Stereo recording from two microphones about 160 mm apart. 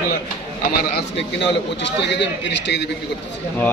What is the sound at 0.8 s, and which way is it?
A man's voice, 85° left.